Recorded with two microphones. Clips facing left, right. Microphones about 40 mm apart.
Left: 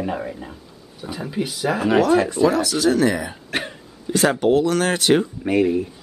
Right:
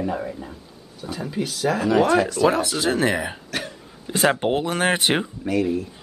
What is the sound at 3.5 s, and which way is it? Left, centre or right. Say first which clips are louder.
Throat clearing: left 3 dB; left.